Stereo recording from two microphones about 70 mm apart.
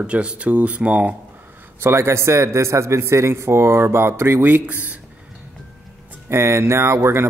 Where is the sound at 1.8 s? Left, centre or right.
Right.